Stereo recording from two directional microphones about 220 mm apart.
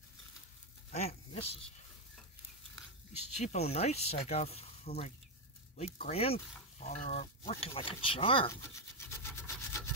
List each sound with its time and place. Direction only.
0.9 s speech: 25° left (ahead or behind)
3.3 s speech: 30° left (ahead or behind)
8.5 s rub: 10° left (ahead or behind)